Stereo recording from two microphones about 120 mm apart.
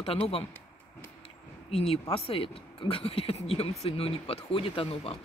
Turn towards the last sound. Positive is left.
turn(degrees=50)  # may be behind; listen again after turning